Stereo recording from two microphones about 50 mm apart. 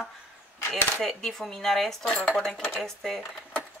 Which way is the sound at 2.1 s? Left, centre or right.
Left.